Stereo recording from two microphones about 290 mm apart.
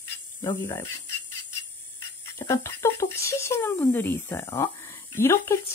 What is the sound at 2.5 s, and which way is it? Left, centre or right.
Speech, centre.